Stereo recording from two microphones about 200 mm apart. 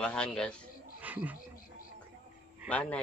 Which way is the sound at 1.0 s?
10° right (ahead or behind).